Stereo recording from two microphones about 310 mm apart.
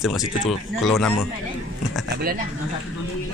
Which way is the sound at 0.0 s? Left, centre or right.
Centre.